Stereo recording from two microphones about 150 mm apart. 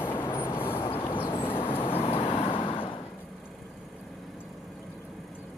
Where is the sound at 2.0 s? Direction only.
40° left (ahead or behind).